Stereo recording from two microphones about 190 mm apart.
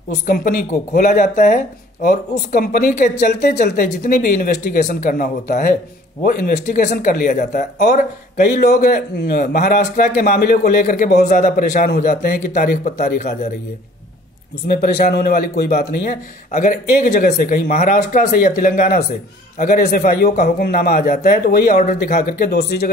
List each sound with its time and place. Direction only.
0.3 s a man's voice: 45° left (ahead or behind)
14.7 s a man's voice: 50° left (ahead or behind)
22.4 s a man's voice: 55° left (ahead or behind)